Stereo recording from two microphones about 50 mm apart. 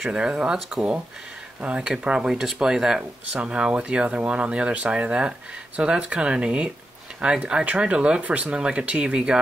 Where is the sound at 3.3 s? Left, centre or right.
Right.